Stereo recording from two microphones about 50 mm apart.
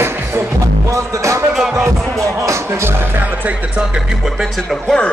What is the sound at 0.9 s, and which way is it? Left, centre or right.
Music, right.